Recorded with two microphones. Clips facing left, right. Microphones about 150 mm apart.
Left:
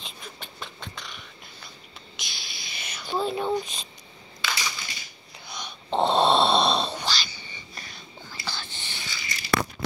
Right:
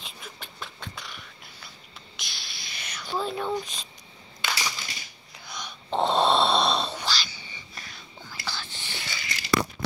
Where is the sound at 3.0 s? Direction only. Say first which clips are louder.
Left 2 dB; 25° left (ahead or behind).